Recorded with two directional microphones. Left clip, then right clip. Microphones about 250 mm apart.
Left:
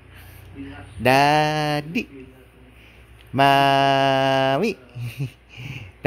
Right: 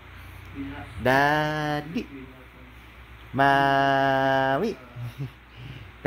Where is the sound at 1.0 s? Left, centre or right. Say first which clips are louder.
Left 5 dB; left.